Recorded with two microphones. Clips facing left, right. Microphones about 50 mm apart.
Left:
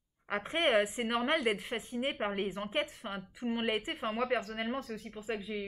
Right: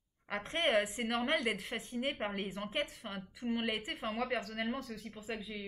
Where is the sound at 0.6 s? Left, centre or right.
Centre.